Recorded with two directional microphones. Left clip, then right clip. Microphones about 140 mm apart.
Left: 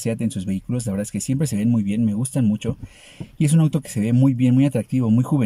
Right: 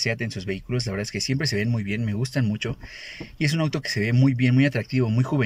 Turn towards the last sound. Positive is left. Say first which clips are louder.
# left 4 dB
turn(degrees=20)  # may be behind; listen again after turning